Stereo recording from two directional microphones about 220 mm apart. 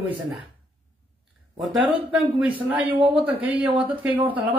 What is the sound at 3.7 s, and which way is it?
Speech, 5° right (ahead or behind).